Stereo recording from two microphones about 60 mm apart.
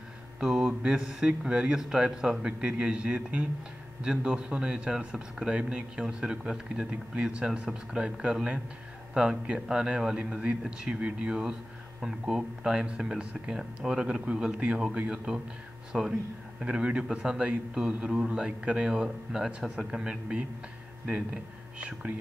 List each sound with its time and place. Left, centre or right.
0.4 s speech: centre